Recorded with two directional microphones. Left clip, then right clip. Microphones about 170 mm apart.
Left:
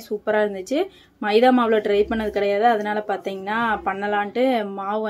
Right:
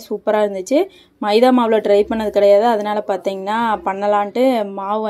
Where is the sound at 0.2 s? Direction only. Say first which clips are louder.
Right 5 dB; 25° right (ahead or behind).